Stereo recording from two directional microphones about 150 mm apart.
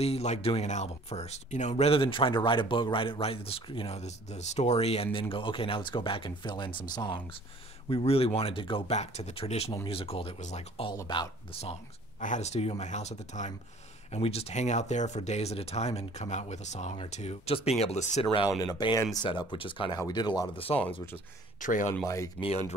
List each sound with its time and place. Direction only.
0.0 s speech: 45° left (ahead or behind)
11.1 s speech: 30° left (ahead or behind)
12.2 s speech: 55° left (ahead or behind)
12.5 s speech: 45° left (ahead or behind)
18.6 s speech: 25° left (ahead or behind)
21.5 s speech: 60° left (ahead or behind)
22.0 s speech: 20° left (ahead or behind)
22.4 s speech: 40° left (ahead or behind)